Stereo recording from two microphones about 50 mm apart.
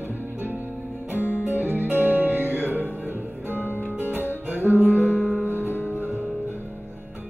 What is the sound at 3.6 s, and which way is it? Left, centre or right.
Music, left.